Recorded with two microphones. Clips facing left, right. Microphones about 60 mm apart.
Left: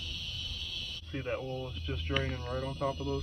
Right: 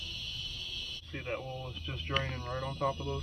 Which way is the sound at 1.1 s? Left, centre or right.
Centre.